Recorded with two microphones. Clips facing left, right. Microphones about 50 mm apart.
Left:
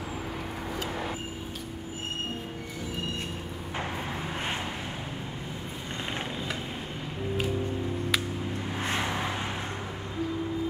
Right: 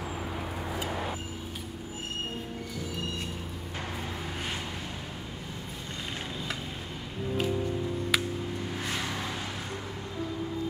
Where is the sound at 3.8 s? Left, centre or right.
Left.